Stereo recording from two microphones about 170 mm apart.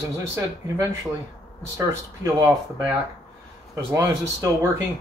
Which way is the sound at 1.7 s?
20° right (ahead or behind).